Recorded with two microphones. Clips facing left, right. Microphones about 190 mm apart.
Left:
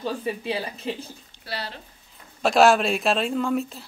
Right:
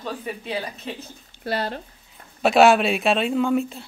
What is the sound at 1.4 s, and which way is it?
Speech, 50° right (ahead or behind).